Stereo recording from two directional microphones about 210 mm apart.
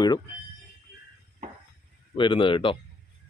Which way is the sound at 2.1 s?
25° left (ahead or behind).